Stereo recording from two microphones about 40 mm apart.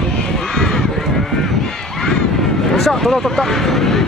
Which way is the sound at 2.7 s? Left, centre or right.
Centre.